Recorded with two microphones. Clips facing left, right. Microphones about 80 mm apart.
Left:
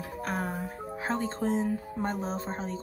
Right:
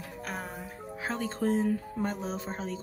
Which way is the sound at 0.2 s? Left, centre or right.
Left.